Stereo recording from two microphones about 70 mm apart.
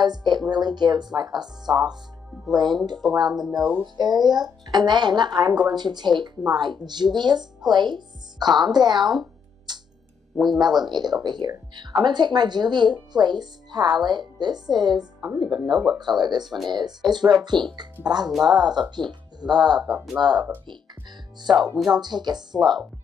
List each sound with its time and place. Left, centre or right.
0.0 s speech: right
2.5 s speech: right
3.0 s speech: centre
3.9 s speech: right
9.7 s a sound: right
10.3 s speech: centre
10.6 s speech: right
15.6 s speech: centre
16.0 s speech: right
18.3 s speech: centre
18.6 s speech: right
21.5 s speech: centre
21.9 s speech: right
22.6 s speech: centre